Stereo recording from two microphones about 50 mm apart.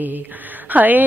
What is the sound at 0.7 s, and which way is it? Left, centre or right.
Speech, right.